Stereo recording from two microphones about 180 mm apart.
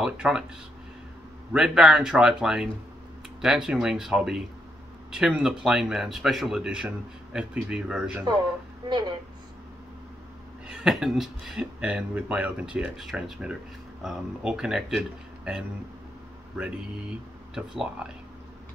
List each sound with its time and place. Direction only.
0.0 s speech: 5° right (ahead or behind)
1.5 s speech: 5° right (ahead or behind)
8.8 s speech: 25° right (ahead or behind)
10.7 s speech: 5° right (ahead or behind)
17.6 s speech: 5° right (ahead or behind)